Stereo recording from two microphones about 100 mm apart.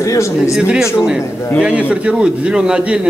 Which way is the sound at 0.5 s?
10° right (ahead or behind).